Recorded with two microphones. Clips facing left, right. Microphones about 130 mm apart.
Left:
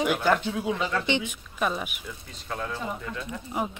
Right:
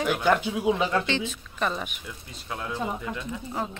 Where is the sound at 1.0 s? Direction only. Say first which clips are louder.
Left 1 dB; 15° left (ahead or behind).